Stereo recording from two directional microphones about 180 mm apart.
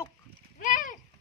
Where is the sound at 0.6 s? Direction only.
50° left (ahead or behind).